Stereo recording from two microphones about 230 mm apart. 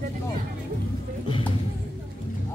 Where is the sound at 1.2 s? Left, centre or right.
Left.